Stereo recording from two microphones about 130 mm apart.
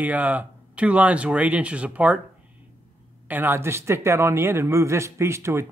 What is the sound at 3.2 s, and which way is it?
A man's voice, 15° right (ahead or behind).